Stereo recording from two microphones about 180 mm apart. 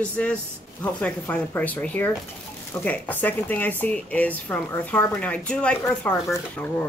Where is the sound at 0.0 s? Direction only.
5° left (ahead or behind).